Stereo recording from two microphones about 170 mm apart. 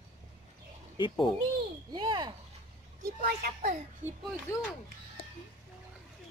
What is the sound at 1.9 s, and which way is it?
Speech, 25° right (ahead or behind).